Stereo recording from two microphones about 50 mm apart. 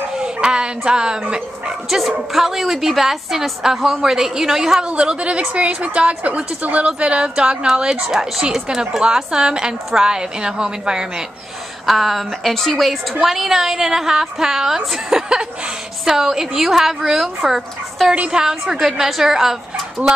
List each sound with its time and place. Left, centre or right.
0.2 s speech: centre
1.9 s a woman's voice: centre
11.8 s a woman's voice: centre
13.2 s a woman's voice: centre
18.1 s a woman's voice: right
18.4 s a woman's voice: centre